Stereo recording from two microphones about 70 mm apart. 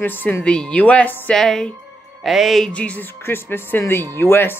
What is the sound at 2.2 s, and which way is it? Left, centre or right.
Speech, centre.